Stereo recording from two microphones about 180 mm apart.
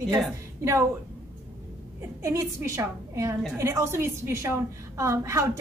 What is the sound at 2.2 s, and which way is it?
A woman's voice, 15° right (ahead or behind).